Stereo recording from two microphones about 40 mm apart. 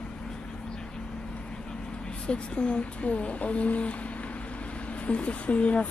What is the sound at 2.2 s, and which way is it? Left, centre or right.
Speech, left.